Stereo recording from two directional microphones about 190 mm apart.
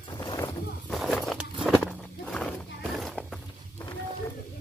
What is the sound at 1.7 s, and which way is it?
Walk, 5° left (ahead or behind).